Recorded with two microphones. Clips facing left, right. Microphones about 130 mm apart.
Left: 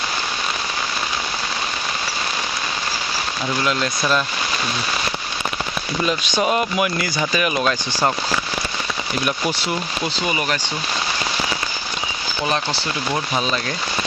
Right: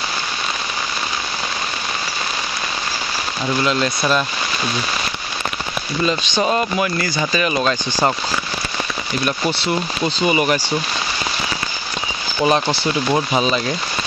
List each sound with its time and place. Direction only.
3.6 s speech: centre (ahead or behind)
6.0 s speech: 5° left (ahead or behind)
10.3 s speech: 15° right (ahead or behind)
12.4 s speech: 20° right (ahead or behind)
13.4 s speech: 5° right (ahead or behind)